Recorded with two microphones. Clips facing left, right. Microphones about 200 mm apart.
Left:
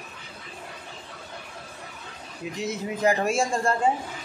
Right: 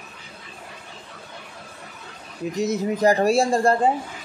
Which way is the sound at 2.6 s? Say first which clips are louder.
Right 7 dB; 40° right (ahead or behind).